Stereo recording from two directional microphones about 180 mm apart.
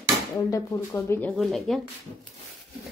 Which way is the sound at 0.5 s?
15° left (ahead or behind).